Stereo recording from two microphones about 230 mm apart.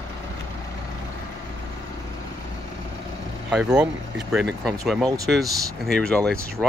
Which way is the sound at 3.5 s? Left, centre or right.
Centre.